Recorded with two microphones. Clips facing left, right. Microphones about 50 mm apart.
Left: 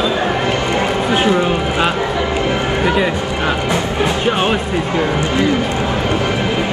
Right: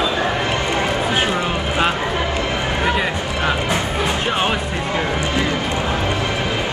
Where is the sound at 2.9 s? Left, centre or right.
Centre.